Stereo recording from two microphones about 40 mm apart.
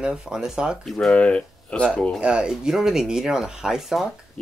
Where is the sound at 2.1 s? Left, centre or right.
Right.